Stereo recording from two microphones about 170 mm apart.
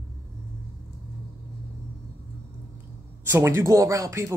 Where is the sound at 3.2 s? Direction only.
15° right (ahead or behind).